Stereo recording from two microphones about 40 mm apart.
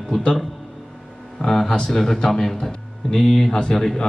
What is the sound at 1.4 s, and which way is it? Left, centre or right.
Speech, centre.